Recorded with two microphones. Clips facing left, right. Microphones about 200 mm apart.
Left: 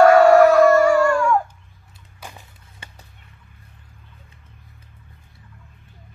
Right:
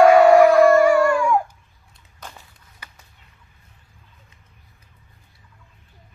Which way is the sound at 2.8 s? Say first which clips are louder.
Left 2 dB; 25° left (ahead or behind).